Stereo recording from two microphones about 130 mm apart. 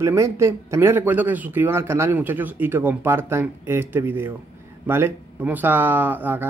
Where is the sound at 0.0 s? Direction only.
20° right (ahead or behind).